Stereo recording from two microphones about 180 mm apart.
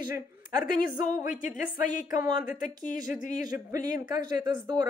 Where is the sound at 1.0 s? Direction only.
45° left (ahead or behind).